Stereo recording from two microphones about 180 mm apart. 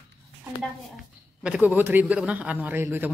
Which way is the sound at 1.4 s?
10° right (ahead or behind).